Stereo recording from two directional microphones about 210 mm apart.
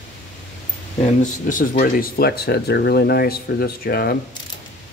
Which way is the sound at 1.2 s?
40° left (ahead or behind).